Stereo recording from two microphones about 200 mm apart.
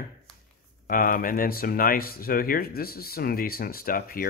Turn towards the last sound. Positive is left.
turn(degrees=45)  # may be behind; listen again after turning